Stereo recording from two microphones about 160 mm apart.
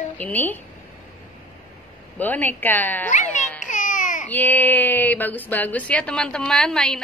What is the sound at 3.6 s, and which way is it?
Baby cry, 55° left (ahead or behind).